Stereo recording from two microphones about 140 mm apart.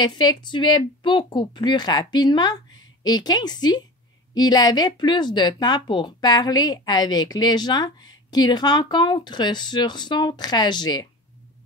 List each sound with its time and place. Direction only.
0.0 s speech: 30° left (ahead or behind)